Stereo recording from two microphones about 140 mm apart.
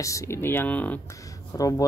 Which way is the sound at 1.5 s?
25° left (ahead or behind).